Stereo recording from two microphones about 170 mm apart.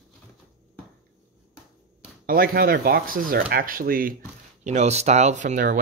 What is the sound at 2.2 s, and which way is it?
Speech, 60° right (ahead or behind).